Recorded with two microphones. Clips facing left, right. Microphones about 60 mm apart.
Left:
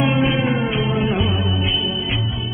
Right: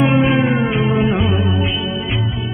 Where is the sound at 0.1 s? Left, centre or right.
Right.